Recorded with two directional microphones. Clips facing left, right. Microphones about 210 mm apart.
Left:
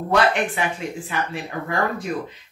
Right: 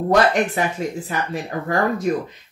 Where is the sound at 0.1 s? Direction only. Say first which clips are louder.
Right 2 dB; 40° right (ahead or behind).